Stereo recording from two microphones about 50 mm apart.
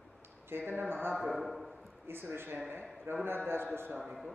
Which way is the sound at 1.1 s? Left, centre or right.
Centre.